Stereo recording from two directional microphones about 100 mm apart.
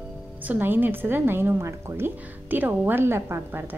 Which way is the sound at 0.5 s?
20° right (ahead or behind).